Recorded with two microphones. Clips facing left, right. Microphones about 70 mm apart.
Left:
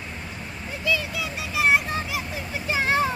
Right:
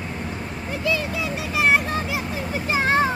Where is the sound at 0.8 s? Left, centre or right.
Right.